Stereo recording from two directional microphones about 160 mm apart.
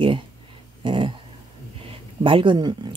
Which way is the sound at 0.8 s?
30° right (ahead or behind).